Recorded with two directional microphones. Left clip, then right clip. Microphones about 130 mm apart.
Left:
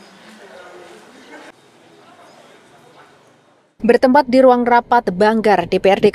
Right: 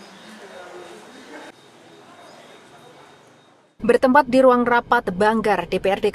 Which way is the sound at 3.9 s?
20° left (ahead or behind).